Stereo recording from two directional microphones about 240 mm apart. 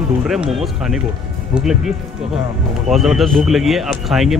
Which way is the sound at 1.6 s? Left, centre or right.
Centre.